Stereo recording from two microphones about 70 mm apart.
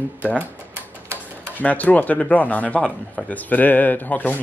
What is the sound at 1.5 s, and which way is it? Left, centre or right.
Speech, left.